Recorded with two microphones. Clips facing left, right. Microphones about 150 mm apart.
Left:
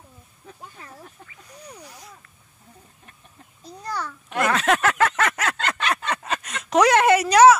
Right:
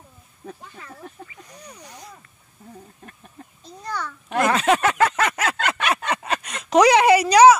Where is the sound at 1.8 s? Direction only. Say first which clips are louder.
Right 1 dB; 5° left (ahead or behind).